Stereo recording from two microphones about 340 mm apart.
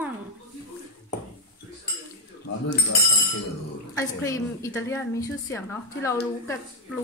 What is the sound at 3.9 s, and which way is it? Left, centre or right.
A woman's voice, centre.